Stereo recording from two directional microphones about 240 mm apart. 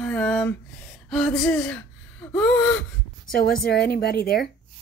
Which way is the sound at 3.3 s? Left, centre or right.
Left.